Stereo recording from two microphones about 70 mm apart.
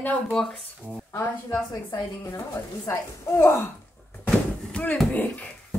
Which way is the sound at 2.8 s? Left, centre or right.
Left.